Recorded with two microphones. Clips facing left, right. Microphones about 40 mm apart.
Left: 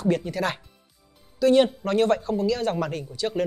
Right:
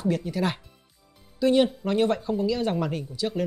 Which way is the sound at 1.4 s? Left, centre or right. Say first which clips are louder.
Left 2 dB; right.